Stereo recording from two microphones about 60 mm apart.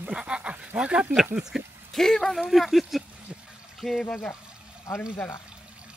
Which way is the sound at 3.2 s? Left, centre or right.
Centre.